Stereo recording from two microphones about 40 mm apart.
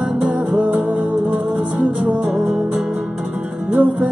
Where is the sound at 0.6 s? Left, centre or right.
Right.